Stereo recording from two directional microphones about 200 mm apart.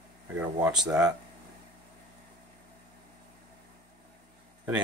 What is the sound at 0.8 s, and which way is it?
Speech, 5° right (ahead or behind).